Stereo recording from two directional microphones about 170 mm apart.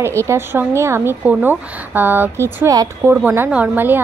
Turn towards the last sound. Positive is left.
turn(degrees=-10)  # may be behind; listen again after turning